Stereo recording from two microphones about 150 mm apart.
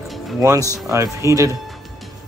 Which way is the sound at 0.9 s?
20° right (ahead or behind).